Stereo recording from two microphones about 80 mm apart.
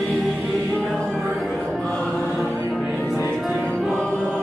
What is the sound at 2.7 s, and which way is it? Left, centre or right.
Music, centre.